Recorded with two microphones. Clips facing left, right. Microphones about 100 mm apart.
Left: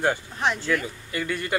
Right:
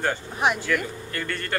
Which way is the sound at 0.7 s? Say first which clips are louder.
Even; 5° left (ahead or behind).